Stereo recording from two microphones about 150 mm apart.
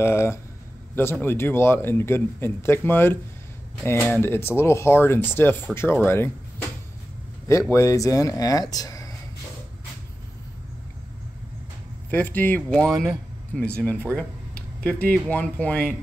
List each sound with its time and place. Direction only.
0.0 s speech: 15° left (ahead or behind)
7.7 s speech: 20° left (ahead or behind)
12.1 s speech: 10° left (ahead or behind)
12.8 s speech: centre (ahead or behind)